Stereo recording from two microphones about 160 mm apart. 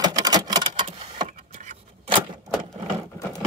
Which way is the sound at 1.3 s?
50° right (ahead or behind).